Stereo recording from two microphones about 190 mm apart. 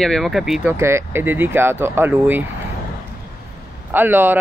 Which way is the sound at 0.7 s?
15° right (ahead or behind).